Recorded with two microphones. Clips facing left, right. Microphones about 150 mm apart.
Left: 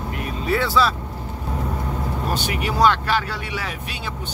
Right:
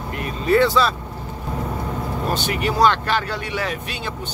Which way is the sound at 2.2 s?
10° left (ahead or behind).